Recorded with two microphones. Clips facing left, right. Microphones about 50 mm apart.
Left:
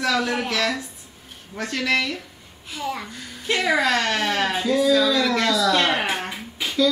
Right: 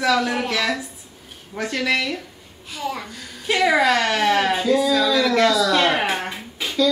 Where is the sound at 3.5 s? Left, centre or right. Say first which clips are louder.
Right 3 dB; centre.